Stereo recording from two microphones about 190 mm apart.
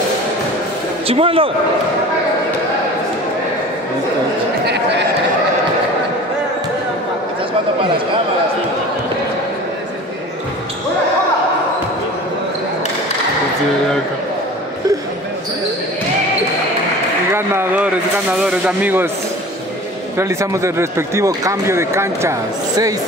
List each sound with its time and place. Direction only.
1.0 s speech: 30° right (ahead or behind)
17.3 s speech: 10° right (ahead or behind)
20.2 s speech: 15° right (ahead or behind)